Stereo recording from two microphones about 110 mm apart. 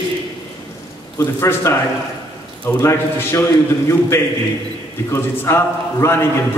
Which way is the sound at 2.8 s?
25° left (ahead or behind).